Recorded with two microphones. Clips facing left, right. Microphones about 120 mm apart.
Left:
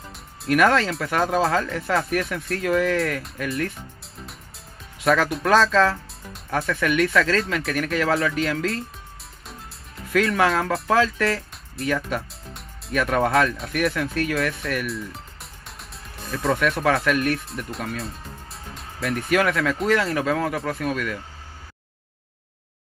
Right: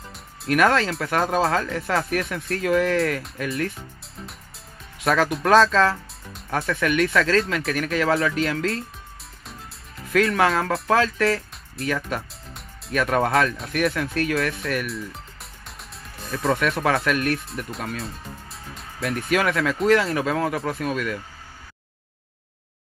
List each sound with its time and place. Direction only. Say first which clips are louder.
0.1 s speech: left 1 dB; centre (ahead or behind)
5.0 s speech: even; centre (ahead or behind)
10.1 s speech: even; centre (ahead or behind)